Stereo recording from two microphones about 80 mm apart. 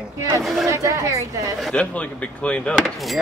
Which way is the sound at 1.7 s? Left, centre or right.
Centre.